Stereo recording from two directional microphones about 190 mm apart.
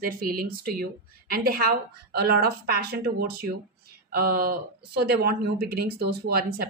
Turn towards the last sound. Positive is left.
turn(degrees=-55)  # may be behind; listen again after turning